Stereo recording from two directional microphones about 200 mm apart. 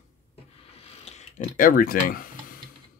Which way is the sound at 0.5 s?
30° left (ahead or behind).